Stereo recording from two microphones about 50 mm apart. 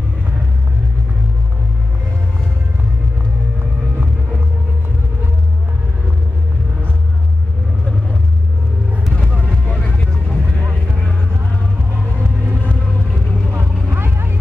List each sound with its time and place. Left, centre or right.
9.5 s vehicle: left
13.5 s vehicle: right
13.9 s vehicle: right